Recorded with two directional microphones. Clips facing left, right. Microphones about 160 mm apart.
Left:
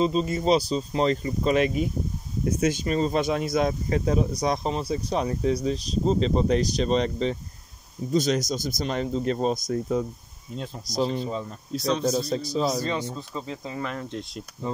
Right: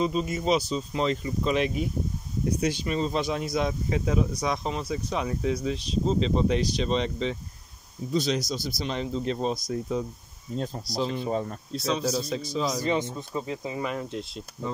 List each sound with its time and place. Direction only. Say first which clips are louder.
0.0 s speech: left 3 dB; 30° left (ahead or behind); by 10.0 s 50° left (ahead or behind)
10.5 s speech: right 3 dB; 40° right (ahead or behind)
11.0 s speech: left 3 dB; 45° left (ahead or behind)
11.7 s speech: left 3 dB; centre (ahead or behind)
12.2 s speech: left 3 dB; 35° left (ahead or behind)
12.8 s speech: right 2 dB; 15° right (ahead or behind)